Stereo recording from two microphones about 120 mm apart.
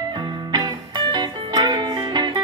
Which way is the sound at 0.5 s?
35° right (ahead or behind).